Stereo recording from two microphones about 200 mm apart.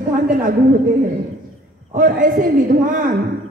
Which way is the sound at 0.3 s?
45° right (ahead or behind).